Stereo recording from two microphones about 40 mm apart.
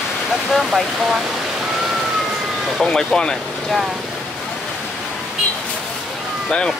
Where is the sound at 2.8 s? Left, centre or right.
Centre.